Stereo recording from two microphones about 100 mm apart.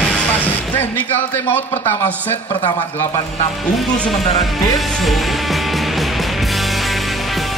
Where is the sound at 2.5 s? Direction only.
45° left (ahead or behind).